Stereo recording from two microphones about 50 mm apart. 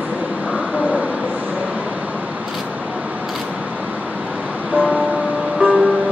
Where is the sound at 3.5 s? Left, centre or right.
Right.